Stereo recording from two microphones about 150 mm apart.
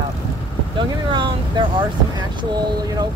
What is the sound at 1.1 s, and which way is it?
Speech, 30° right (ahead or behind).